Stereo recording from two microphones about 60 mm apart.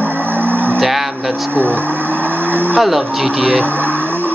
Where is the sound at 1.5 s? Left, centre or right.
Right.